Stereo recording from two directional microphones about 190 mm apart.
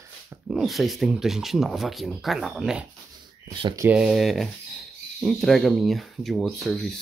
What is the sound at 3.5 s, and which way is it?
Speech, 25° right (ahead or behind).